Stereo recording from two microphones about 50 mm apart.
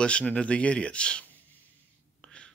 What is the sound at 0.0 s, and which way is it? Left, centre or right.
Speech, left.